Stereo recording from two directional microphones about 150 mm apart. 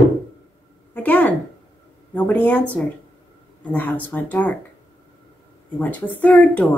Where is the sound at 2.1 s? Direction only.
10° left (ahead or behind).